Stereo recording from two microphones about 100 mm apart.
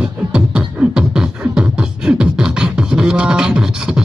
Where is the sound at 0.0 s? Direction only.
10° right (ahead or behind).